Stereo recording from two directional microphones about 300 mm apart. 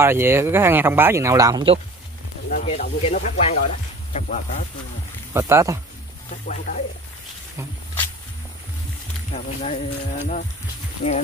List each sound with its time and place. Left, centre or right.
0.0 s speech: centre
2.5 s speech: left
5.3 s speech: centre
6.4 s speech: left
9.3 s speech: left